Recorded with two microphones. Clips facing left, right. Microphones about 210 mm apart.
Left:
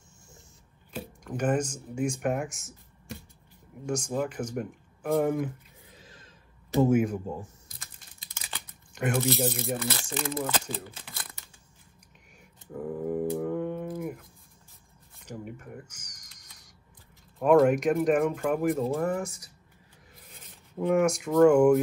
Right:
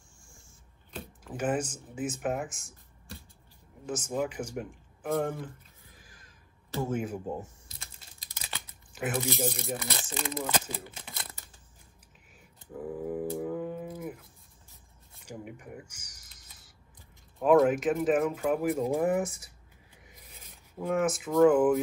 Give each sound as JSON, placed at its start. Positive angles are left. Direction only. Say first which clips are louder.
{"t": 1.2, "sound": "speech", "louder": "left 3 dB", "side_deg": -5}
{"t": 3.8, "sound": "speech", "louder": "left 2 dB", "side_deg": -5}
{"t": 5.4, "sound": "a sound", "louder": "left 9 dB", "side_deg": 20}
{"t": 7.3, "sound": "typing", "louder": "right 1 dB", "side_deg": -25}
{"t": 8.5, "sound": "typing", "louder": "even", "side_deg": -5}
{"t": 9.8, "sound": "speech", "louder": "left 4 dB", "side_deg": -15}
{"t": 12.7, "sound": "a sound", "louder": "left 3 dB", "side_deg": 0}
{"t": 15.2, "sound": "a sound", "louder": "left 2 dB", "side_deg": -10}
{"t": 17.4, "sound": "speech", "louder": "left 2 dB", "side_deg": 0}
{"t": 20.2, "sound": "speech", "louder": "left 2 dB", "side_deg": 0}